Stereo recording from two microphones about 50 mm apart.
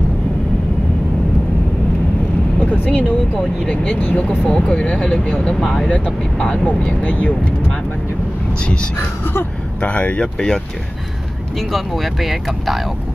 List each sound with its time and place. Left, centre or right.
2.6 s speech: left
4.5 s speech: centre
5.9 s speech: left
9.2 s speech: left
9.8 s speech: left
10.2 s speech: centre
11.7 s speech: centre